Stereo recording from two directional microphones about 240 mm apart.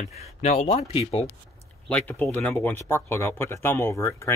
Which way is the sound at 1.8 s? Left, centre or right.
Centre.